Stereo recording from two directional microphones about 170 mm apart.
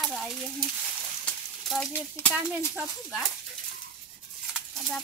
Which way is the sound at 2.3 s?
5° right (ahead or behind).